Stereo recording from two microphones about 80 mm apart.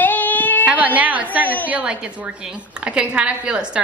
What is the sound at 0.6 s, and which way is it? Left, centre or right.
A woman's voice, centre.